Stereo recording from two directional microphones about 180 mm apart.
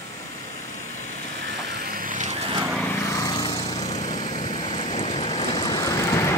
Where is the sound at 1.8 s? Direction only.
50° right (ahead or behind).